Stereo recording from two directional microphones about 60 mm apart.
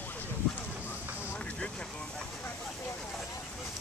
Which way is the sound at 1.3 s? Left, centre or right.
Left.